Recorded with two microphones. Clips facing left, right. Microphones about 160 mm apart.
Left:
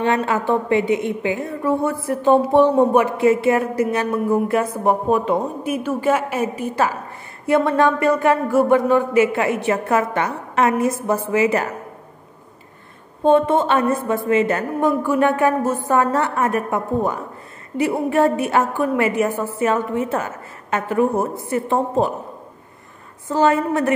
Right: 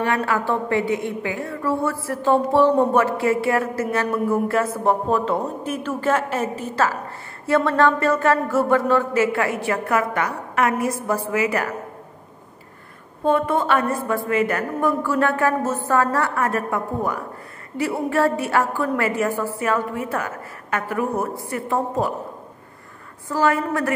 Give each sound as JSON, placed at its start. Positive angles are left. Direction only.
{"t": 0.0, "sound": "a woman's voice", "side_deg": 25}
{"t": 13.2, "sound": "a woman's voice", "side_deg": 25}
{"t": 23.2, "sound": "a woman's voice", "side_deg": 25}